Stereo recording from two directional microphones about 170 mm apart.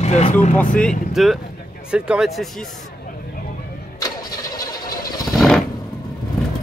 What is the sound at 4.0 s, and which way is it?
Vehicle, 20° left (ahead or behind).